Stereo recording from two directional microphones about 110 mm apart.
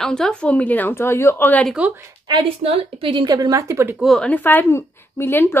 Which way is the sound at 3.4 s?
30° right (ahead or behind).